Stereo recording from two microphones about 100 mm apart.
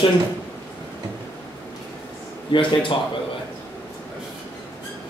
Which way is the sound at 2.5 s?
55° left (ahead or behind).